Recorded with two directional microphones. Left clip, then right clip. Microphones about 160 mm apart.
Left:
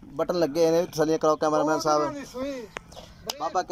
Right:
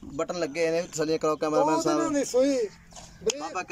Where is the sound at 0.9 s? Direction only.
5° left (ahead or behind).